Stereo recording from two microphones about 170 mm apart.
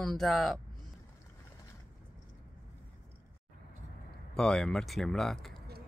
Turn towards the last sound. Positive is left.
turn(degrees=0)  # may be behind; listen again after turning